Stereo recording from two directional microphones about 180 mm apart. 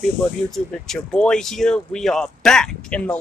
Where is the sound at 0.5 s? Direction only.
5° left (ahead or behind).